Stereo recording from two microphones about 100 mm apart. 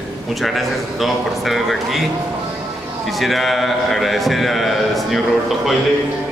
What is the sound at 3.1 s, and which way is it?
A man's voice, centre (ahead or behind).